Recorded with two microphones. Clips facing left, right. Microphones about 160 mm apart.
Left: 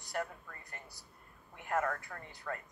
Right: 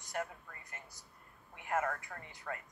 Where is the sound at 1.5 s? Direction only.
40° left (ahead or behind).